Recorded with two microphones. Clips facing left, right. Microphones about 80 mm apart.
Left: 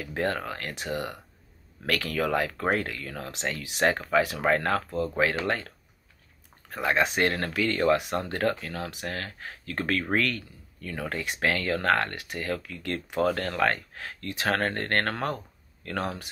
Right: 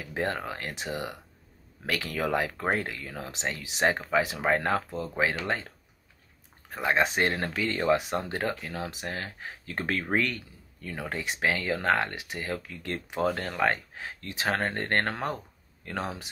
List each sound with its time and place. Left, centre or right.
0.0 s speech: centre
6.7 s speech: right